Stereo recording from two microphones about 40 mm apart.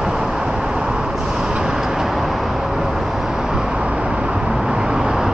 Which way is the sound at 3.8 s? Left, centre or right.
Right.